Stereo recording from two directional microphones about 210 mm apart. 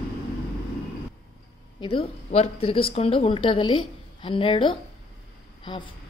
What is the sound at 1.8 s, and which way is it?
A woman's voice, 25° left (ahead or behind).